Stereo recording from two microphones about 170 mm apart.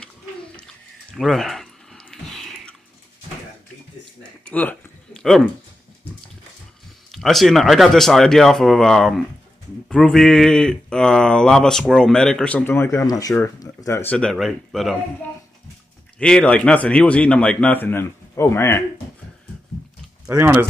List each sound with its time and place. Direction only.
1.1 s drip: centre (ahead or behind)
4.5 s a sound: 10° left (ahead or behind)
7.1 s speech: centre (ahead or behind); by 14.1 s 15° left (ahead or behind)
14.1 s speech: 5° left (ahead or behind)
16.2 s speech: 5° left (ahead or behind)
20.2 s speech: 15° right (ahead or behind)